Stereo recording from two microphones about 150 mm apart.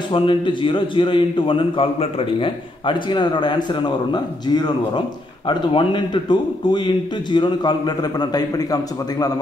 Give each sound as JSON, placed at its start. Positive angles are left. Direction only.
{"t": 0.1, "sound": "a man's voice", "side_deg": 35}